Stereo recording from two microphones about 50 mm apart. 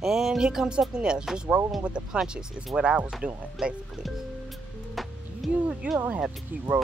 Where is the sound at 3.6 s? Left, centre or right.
Centre.